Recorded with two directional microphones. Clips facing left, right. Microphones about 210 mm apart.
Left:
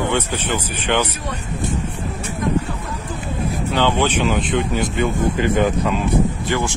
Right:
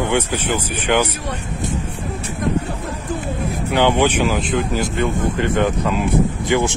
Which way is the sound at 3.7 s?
15° right (ahead or behind).